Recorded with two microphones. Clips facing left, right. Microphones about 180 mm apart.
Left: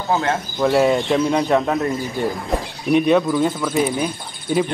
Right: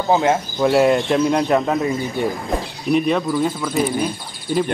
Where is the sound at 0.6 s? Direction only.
Centre (ahead or behind).